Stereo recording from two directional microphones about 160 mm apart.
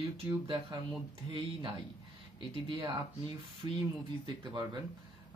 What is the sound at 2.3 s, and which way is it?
Speech, 30° right (ahead or behind).